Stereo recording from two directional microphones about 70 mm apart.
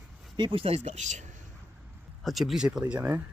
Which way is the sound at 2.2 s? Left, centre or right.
Centre.